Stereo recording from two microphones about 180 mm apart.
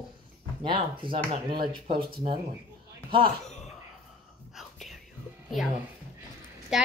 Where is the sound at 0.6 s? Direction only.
25° right (ahead or behind).